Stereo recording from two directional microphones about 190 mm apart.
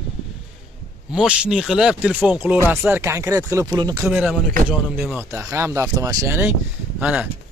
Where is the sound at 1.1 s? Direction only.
5° right (ahead or behind); by 4.1 s 20° right (ahead or behind).